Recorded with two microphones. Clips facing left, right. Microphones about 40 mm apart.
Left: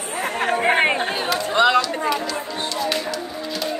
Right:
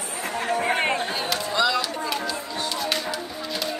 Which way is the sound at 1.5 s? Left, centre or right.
Left.